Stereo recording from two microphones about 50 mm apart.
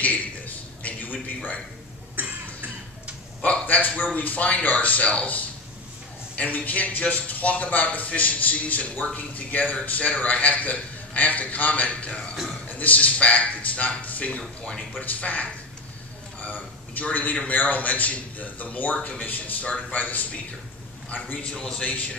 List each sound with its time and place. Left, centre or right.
0.8 s a sound: left
3.4 s a sound: left
4.1 s a man's voice: left
14.4 s speech: centre
15.0 s speech: left
16.4 s a man's voice: left
21.5 s speech: centre